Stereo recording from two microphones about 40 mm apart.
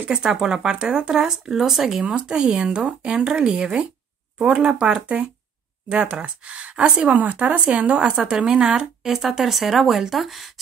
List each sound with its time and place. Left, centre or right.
0.1 s speech: centre
2.0 s speech: right
9.1 s speech: centre